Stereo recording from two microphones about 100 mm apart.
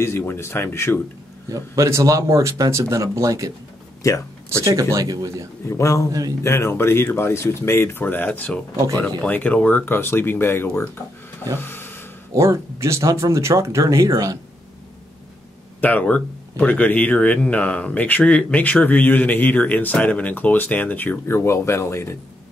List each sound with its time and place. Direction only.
0.0 s speech: 25° left (ahead or behind)
1.5 s speech: 30° right (ahead or behind)
4.0 s a man's voice: 35° left (ahead or behind)
4.5 s speech: 30° right (ahead or behind)
5.7 s a man's voice: 30° left (ahead or behind)
11.5 s a sound: 20° left (ahead or behind)
12.4 s speech: 30° right (ahead or behind)
15.8 s speech: 15° left (ahead or behind)